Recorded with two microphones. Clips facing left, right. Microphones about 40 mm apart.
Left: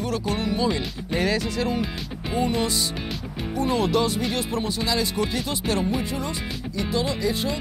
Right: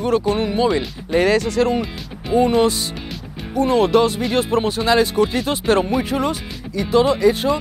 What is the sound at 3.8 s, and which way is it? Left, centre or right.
Speech, right.